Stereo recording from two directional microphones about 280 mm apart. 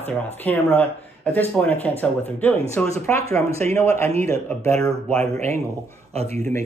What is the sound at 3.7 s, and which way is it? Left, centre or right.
Speech, centre.